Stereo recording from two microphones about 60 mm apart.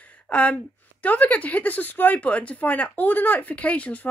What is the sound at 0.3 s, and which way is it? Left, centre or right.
Speech, left.